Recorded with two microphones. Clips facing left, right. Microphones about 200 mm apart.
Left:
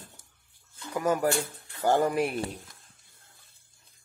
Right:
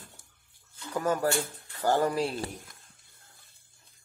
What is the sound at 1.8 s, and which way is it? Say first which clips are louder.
Speech: left 2 dB; 15° left (ahead or behind).